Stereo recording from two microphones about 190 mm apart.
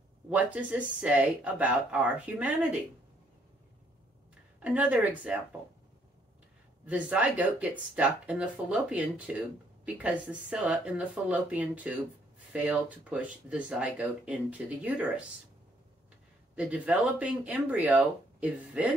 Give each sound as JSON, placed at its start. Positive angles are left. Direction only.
{"t": 0.3, "sound": "speech", "side_deg": -5}
{"t": 4.6, "sound": "speech", "side_deg": -5}
{"t": 6.9, "sound": "speech", "side_deg": -5}
{"t": 16.5, "sound": "speech", "side_deg": -5}